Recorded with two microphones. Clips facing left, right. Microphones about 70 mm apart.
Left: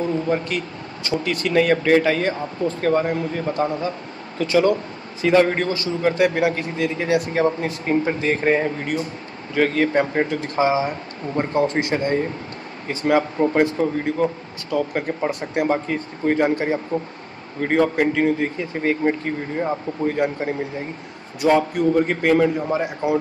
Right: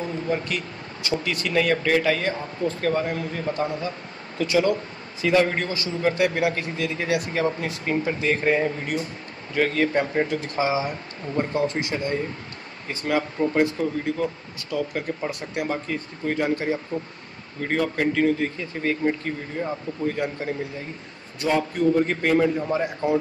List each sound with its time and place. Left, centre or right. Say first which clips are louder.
1.3 s speech: left 5 dB; left
11.6 s a man's voice: left 5 dB; left
21.4 s a man's voice: left 4 dB; left
22.6 s a man's voice: left 2 dB; centre